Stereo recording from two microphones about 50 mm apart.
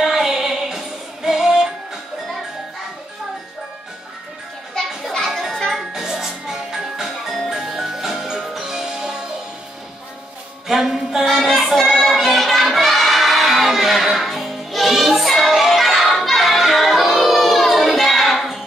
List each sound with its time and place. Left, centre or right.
0.0 s music: centre
4.8 s children playing: centre
5.2 s music: centre
10.7 s music: centre
11.3 s child singing: centre
11.9 s music: centre